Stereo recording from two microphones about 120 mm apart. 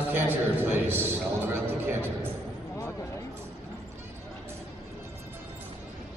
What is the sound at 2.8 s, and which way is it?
Music, 25° left (ahead or behind).